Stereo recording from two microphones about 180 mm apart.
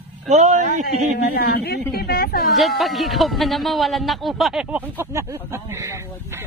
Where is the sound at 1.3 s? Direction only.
60° left (ahead or behind).